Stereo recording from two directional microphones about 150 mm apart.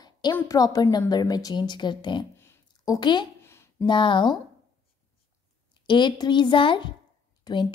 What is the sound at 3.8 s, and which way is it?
Speech, 30° left (ahead or behind).